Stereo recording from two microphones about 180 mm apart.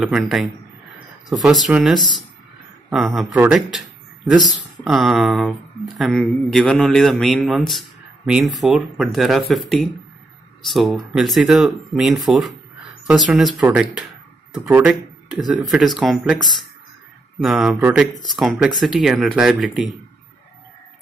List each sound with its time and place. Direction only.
0.0 s speech: centre (ahead or behind)
2.0 s speech: 25° left (ahead or behind)
3.2 s speech: 5° right (ahead or behind)
4.8 s speech: centre (ahead or behind)
17.4 s speech: centre (ahead or behind)